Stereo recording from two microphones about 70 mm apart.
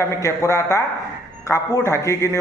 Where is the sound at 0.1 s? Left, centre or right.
Left.